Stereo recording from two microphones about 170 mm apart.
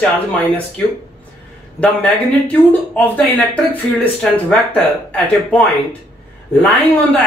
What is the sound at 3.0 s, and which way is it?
Speech, 10° left (ahead or behind).